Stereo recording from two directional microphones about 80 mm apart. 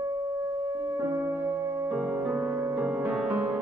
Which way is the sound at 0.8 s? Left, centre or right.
Right.